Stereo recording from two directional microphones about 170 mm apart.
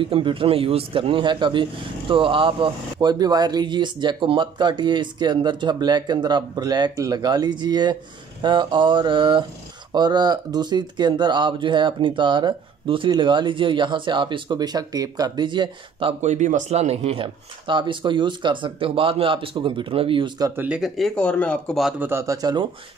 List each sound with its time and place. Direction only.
0.0 s speech: 30° right (ahead or behind)
20.6 s speech: 5° right (ahead or behind)
22.0 s speech: 15° right (ahead or behind)